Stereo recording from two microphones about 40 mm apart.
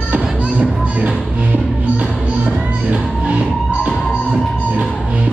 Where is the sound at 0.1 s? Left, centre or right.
Right.